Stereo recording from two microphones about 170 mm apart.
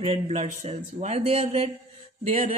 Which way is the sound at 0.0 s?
40° right (ahead or behind).